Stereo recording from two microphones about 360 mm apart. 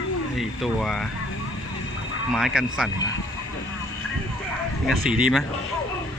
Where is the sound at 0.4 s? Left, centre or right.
Centre.